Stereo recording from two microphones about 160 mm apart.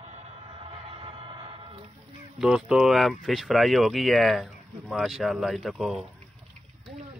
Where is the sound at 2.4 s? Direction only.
5° right (ahead or behind).